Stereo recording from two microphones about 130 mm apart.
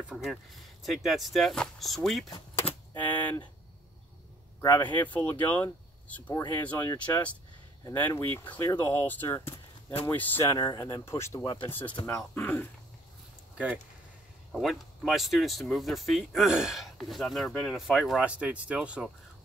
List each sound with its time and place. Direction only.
0.0 s speech: 5° right (ahead or behind)
3.0 s speech: 15° left (ahead or behind)
4.8 s speech: 15° left (ahead or behind)
10.5 s speech: 30° left (ahead or behind)
12.1 s speech: 10° left (ahead or behind)
14.5 s speech: centre (ahead or behind)